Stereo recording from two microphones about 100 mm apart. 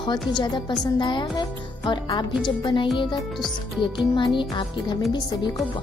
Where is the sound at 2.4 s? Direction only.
55° left (ahead or behind).